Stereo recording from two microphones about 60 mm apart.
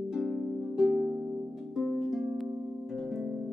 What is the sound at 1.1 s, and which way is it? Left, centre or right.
Harp, centre.